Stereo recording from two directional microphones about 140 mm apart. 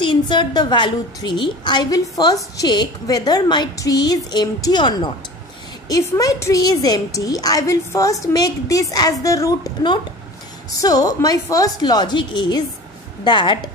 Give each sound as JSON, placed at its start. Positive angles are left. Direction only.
{"t": 0.0, "sound": "a woman's voice", "side_deg": 35}